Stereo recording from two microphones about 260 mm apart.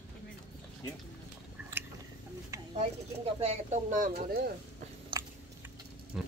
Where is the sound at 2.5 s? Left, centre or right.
Centre.